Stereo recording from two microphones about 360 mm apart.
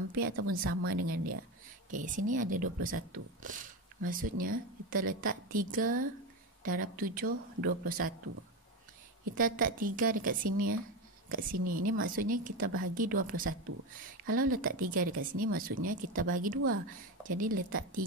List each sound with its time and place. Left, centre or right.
0.5 s speech: right
9.3 s speech: right